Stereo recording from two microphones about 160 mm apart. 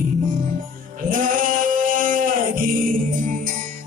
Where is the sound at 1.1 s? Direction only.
55° right (ahead or behind).